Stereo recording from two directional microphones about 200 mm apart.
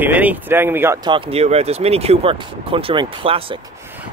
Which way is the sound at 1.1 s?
30° right (ahead or behind).